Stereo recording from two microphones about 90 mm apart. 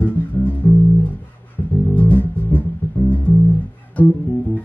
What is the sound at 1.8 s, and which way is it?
Music, 20° left (ahead or behind).